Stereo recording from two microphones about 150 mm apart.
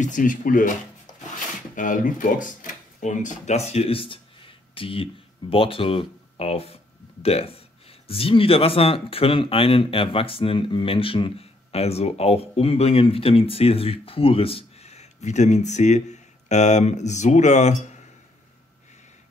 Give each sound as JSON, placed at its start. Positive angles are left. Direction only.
{"t": 0.0, "sound": "speech", "side_deg": 60}
{"t": 1.8, "sound": "speech", "side_deg": 60}